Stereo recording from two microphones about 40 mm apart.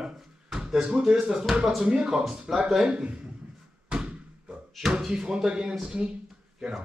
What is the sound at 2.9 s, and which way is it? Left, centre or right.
Speech, right.